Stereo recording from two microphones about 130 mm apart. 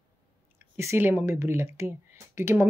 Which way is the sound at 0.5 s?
20° right (ahead or behind).